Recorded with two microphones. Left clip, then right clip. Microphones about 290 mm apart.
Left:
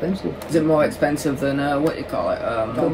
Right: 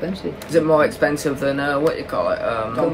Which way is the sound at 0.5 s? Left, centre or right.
Centre.